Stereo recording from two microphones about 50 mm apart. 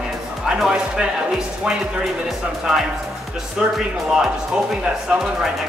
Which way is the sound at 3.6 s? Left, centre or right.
Centre.